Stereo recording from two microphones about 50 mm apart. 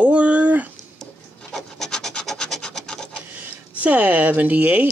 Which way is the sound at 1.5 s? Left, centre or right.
Centre.